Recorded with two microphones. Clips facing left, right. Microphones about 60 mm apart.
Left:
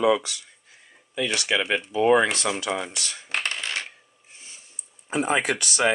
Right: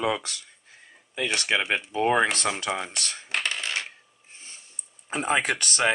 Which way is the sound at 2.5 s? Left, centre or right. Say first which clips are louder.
Left 2 dB; right.